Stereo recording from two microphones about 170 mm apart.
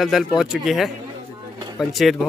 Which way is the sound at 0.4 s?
Centre (ahead or behind).